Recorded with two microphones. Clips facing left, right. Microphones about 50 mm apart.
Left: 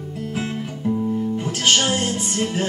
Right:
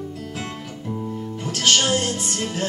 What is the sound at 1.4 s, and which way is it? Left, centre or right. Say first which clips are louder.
Music: right 1 dB; centre.